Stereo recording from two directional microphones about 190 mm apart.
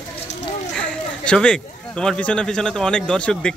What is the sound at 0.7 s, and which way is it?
Speech, 5° left (ahead or behind).